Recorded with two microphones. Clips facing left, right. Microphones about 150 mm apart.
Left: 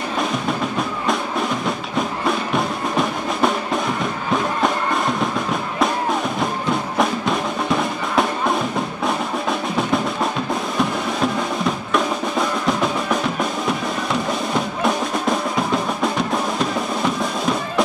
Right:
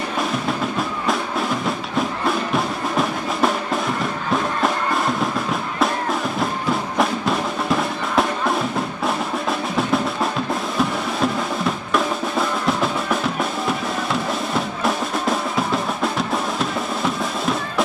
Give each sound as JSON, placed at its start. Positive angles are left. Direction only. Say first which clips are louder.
{"t": 0.5, "sound": "music", "louder": "left 1 dB", "side_deg": 0}
{"t": 10.8, "sound": "drum", "louder": "even", "side_deg": 0}
{"t": 14.5, "sound": "music", "louder": "left 2 dB", "side_deg": 0}